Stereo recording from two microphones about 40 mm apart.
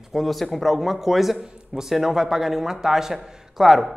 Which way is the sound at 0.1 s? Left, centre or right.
Centre.